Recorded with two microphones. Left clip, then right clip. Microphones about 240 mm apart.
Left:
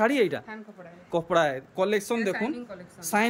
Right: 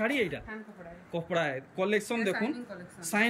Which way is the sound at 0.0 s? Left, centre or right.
Centre.